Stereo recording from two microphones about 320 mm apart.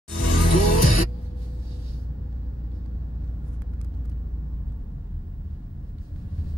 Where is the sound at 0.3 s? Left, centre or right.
Left.